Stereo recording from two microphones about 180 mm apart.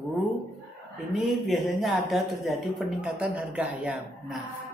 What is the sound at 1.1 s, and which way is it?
Speech, centre (ahead or behind).